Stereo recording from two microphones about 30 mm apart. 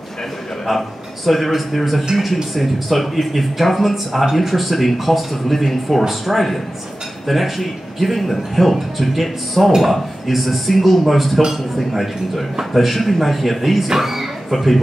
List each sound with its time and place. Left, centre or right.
0.7 s speech: centre
13.9 s a sound: centre
14.5 s speech: centre